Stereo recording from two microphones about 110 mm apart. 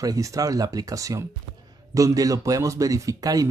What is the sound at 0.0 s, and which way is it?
Speech, 30° right (ahead or behind).